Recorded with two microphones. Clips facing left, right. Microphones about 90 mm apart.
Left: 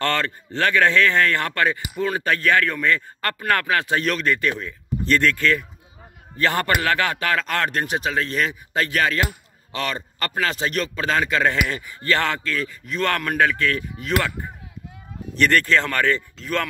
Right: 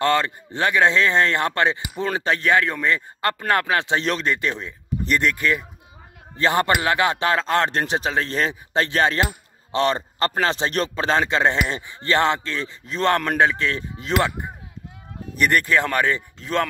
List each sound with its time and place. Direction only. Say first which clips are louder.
0.0 s a man's voice: right 3 dB; 20° right (ahead or behind)
15.3 s speech: left 1 dB; 15° right (ahead or behind)